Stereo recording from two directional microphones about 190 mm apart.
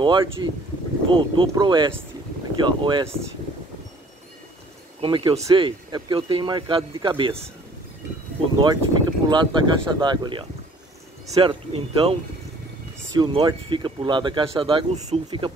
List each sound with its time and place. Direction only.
0.0 s speech: 25° right (ahead or behind)
5.0 s speech: 25° right (ahead or behind)
8.5 s speech: 20° right (ahead or behind)